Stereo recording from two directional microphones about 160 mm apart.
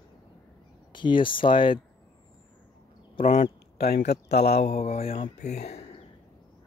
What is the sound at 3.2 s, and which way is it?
Speech, 50° left (ahead or behind).